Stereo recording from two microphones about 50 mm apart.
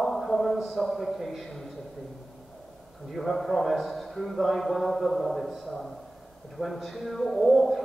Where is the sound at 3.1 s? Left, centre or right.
Centre.